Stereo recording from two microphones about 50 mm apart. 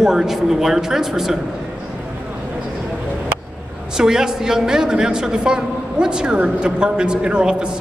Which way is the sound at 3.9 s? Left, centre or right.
Centre.